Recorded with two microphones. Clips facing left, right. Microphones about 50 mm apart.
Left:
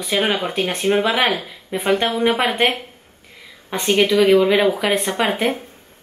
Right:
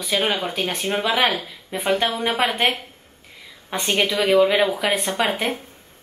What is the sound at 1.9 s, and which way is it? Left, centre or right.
Speech, centre.